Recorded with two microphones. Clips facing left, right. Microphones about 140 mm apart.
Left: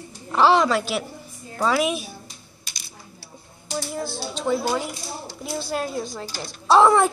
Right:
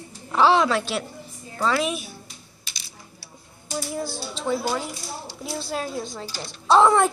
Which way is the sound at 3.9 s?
5° right (ahead or behind).